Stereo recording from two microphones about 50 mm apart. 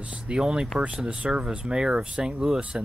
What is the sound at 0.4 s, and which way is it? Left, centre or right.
Speech, centre.